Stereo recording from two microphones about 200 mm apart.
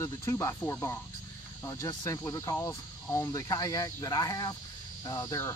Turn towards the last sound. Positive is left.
turn(degrees=15)  # may be behind; listen again after turning